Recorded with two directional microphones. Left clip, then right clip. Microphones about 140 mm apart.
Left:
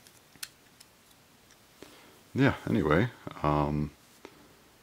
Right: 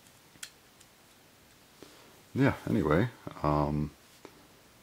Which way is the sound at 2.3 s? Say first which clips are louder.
Left 2 dB; 30° left (ahead or behind).